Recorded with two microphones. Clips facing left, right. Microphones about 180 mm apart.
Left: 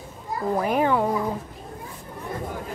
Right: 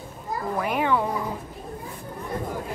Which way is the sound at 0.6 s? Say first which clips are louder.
Left 2 dB; 40° left (ahead or behind).